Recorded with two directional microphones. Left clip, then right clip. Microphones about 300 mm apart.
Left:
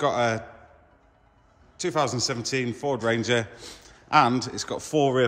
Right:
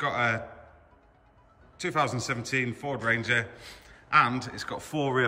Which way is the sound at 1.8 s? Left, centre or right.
Centre.